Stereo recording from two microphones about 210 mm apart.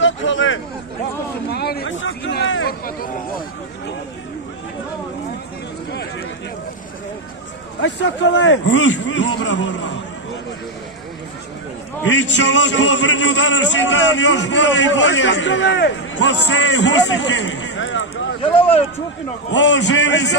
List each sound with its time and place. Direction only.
0.0 s hubbub: 65° left (ahead or behind)
1.5 s a sound: 50° left (ahead or behind)
8.4 s a man's voice: 60° left (ahead or behind)
12.0 s a man's voice: 60° left (ahead or behind)
18.4 s speech: 25° left (ahead or behind)
19.5 s a man's voice: 55° left (ahead or behind)